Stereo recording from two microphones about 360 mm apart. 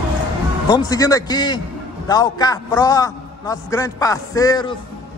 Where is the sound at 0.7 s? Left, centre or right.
Centre.